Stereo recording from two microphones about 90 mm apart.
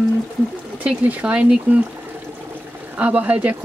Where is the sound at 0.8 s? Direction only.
15° right (ahead or behind).